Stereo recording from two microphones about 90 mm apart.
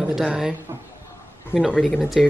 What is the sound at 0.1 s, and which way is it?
Speech, 5° right (ahead or behind).